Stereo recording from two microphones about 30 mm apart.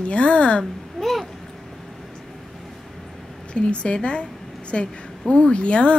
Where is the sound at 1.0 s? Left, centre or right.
Centre.